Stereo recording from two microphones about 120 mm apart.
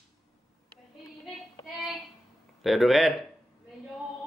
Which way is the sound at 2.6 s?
Centre (ahead or behind).